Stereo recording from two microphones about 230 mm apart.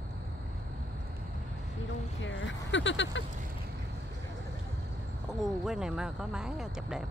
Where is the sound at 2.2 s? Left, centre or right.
Left.